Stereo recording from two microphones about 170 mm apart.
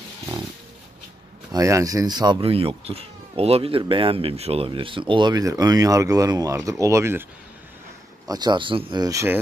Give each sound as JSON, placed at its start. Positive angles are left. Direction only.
{"t": 1.5, "sound": "speech", "side_deg": -20}
{"t": 8.3, "sound": "speech", "side_deg": -25}